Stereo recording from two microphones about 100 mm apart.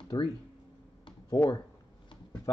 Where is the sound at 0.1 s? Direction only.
45° left (ahead or behind).